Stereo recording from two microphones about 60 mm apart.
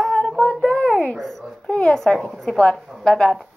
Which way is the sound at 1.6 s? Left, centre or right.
Centre.